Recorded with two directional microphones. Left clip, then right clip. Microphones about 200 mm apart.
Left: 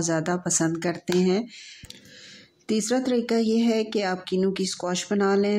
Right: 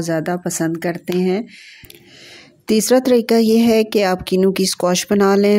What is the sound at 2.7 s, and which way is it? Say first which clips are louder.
Speech: right 11 dB; 45° right (ahead or behind).